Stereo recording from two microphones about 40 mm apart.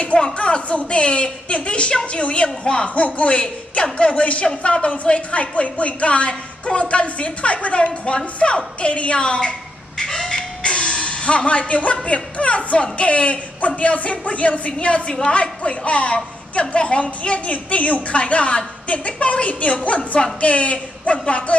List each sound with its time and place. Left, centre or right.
0.2 s a woman's voice: left
9.9 s a sound: centre
10.6 s a woman's voice: left